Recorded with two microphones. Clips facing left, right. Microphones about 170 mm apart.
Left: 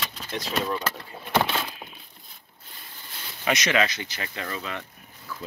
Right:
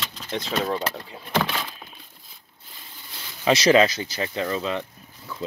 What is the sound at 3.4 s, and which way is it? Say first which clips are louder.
Speech: right 7 dB; 30° right (ahead or behind).